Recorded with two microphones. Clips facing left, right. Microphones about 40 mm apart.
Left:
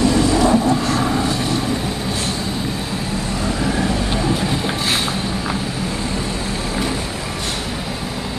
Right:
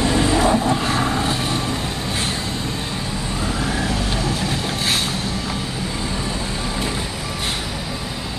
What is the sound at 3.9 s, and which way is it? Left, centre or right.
Vehicle, centre.